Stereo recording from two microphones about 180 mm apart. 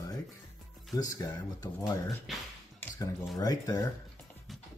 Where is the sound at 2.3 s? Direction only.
Centre (ahead or behind).